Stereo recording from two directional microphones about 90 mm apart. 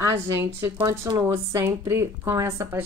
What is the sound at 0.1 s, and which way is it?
A woman's voice, 30° right (ahead or behind).